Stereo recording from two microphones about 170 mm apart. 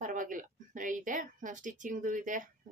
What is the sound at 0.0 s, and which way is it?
A woman's voice, 50° right (ahead or behind).